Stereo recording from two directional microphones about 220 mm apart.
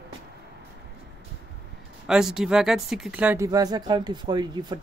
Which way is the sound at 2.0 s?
Centre (ahead or behind).